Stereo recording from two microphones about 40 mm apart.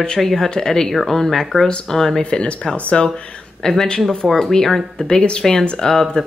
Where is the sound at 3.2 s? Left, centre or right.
Left.